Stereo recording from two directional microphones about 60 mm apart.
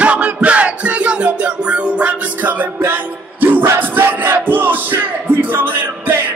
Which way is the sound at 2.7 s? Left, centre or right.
Right.